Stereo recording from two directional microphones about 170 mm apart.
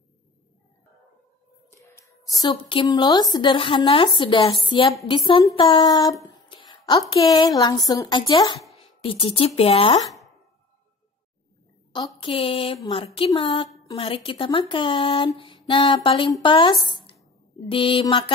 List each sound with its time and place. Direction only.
1.7 s a woman's voice: 15° left (ahead or behind)
11.9 s speech: 30° left (ahead or behind)
16.8 s a sound: 30° left (ahead or behind)
17.6 s speech: 30° left (ahead or behind)